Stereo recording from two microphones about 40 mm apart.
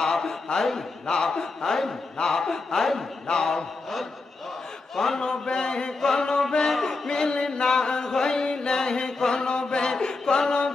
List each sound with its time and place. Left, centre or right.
0.0 s a man's voice: centre
3.3 s a man's voice: centre
4.9 s a man's voice: centre
5.2 s a man's voice: left
6.7 s a sound: centre